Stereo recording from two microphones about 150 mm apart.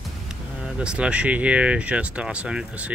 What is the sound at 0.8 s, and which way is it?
Speech, 5° right (ahead or behind).